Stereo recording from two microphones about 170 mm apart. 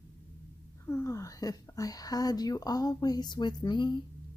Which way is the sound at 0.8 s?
15° left (ahead or behind).